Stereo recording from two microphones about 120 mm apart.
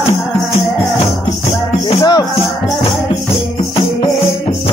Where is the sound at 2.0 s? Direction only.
35° left (ahead or behind).